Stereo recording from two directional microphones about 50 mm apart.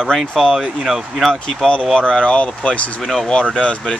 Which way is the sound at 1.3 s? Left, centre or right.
Centre.